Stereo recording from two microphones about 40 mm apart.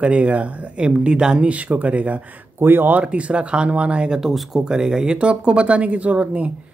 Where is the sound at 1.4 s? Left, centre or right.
Right.